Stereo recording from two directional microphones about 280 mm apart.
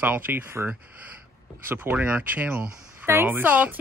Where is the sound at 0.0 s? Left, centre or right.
Centre.